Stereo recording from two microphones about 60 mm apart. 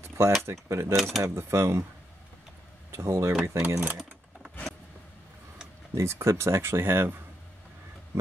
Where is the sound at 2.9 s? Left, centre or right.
Right.